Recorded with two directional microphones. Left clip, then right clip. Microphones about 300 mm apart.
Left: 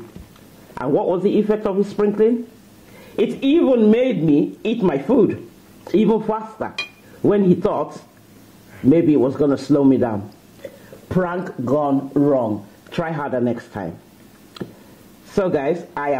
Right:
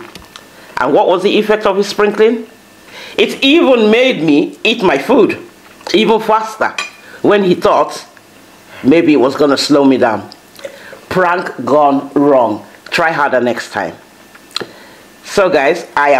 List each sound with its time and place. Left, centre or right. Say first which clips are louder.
0.7 s speech: right 9 dB; centre
15.3 s speech: right 9 dB; centre